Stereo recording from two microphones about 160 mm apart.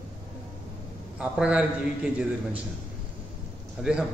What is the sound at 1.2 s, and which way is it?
A man's voice, 5° right (ahead or behind).